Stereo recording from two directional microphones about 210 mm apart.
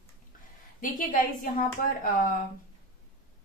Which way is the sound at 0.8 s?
40° left (ahead or behind).